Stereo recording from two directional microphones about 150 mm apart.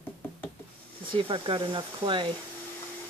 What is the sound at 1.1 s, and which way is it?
Speech, 35° right (ahead or behind).